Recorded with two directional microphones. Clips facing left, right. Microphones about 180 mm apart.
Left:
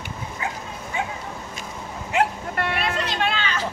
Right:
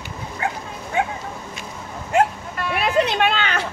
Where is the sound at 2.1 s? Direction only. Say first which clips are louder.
Right 4 dB; 50° right (ahead or behind).